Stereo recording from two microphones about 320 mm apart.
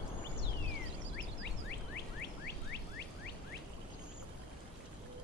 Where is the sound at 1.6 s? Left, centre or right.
Left.